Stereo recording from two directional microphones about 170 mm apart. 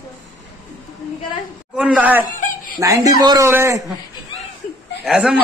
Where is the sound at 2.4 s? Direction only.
50° left (ahead or behind).